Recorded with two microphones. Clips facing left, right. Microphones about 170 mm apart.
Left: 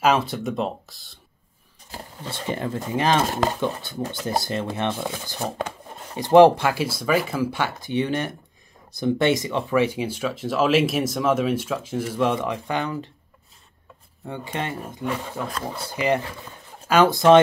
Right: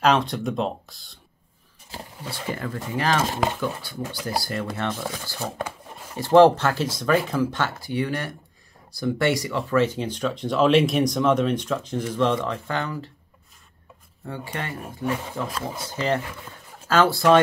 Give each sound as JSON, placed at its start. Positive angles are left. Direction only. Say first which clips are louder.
{"t": 0.0, "sound": "speech", "louder": "even", "side_deg": 5}
{"t": 2.2, "sound": "speech", "louder": "left 3 dB", "side_deg": 25}
{"t": 7.9, "sound": "speech", "louder": "left 2 dB", "side_deg": 20}
{"t": 14.2, "sound": "speech", "louder": "left 3 dB", "side_deg": 20}
{"t": 15.0, "sound": "speech", "louder": "right 2 dB", "side_deg": -10}
{"t": 15.8, "sound": "speech", "louder": "left 3 dB", "side_deg": 10}